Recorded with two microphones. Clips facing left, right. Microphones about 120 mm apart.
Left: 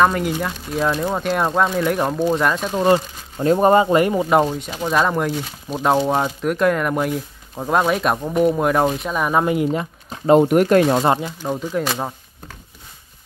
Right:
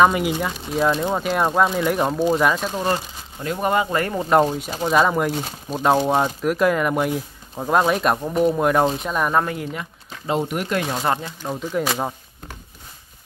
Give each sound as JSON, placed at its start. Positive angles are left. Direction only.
{"t": 0.0, "sound": "speech", "side_deg": -5}
{"t": 2.7, "sound": "speech", "side_deg": 20}
{"t": 3.4, "sound": "speech", "side_deg": 35}
{"t": 3.9, "sound": "speech", "side_deg": 15}
{"t": 4.7, "sound": "speech", "side_deg": -5}
{"t": 9.4, "sound": "speech", "side_deg": 20}
{"t": 9.7, "sound": "a sound", "side_deg": 30}
{"t": 10.5, "sound": "speech", "side_deg": 45}
{"t": 11.0, "sound": "speech", "side_deg": 20}
{"t": 11.2, "sound": "speech", "side_deg": 5}